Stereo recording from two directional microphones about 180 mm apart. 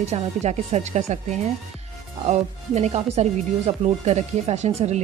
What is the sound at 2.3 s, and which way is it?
Speech, 35° right (ahead or behind).